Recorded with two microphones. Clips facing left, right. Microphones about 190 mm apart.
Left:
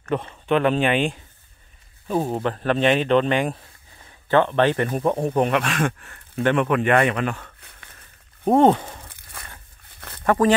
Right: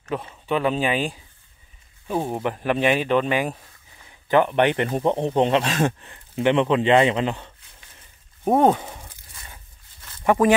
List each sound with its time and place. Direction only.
0.1 s speech: 5° right (ahead or behind); by 7.5 s 25° right (ahead or behind)
8.5 s speech: 5° right (ahead or behind)
9.1 s biting: 60° left (ahead or behind)
9.8 s a sound: 65° left (ahead or behind)
10.2 s speech: 10° right (ahead or behind)